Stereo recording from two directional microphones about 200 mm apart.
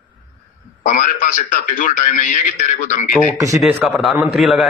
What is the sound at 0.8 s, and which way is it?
A man's voice, 40° left (ahead or behind).